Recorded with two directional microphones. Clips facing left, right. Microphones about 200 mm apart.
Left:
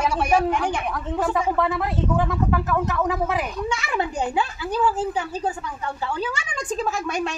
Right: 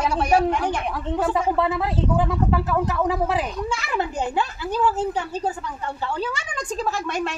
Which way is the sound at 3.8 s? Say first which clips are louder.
Even; 5° left (ahead or behind).